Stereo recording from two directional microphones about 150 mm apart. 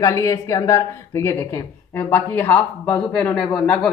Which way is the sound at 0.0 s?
20° left (ahead or behind).